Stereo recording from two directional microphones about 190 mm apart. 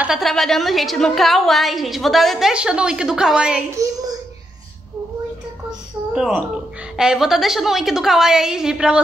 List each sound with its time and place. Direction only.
0.0 s a woman's voice: centre (ahead or behind)
3.7 s child singing: 20° right (ahead or behind)
5.7 s a woman's voice: 5° right (ahead or behind)